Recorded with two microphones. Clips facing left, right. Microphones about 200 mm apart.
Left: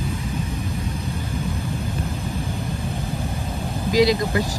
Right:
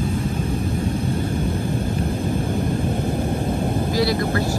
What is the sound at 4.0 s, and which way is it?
Vehicle, 15° left (ahead or behind).